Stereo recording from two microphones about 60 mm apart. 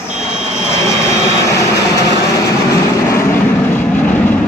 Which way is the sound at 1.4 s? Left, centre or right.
Left.